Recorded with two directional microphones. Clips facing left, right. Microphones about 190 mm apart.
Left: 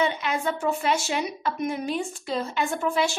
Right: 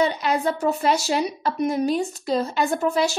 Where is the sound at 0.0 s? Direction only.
35° right (ahead or behind).